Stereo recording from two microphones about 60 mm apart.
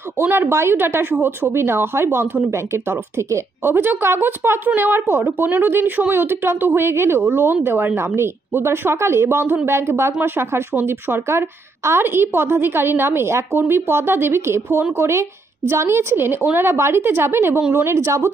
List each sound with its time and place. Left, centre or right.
0.2 s a woman's voice: right
3.6 s a woman's voice: right